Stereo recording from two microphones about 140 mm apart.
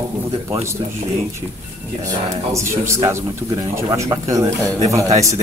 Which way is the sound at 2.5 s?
20° right (ahead or behind).